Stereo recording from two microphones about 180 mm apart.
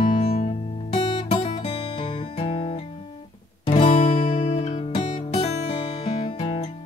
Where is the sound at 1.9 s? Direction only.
25° left (ahead or behind).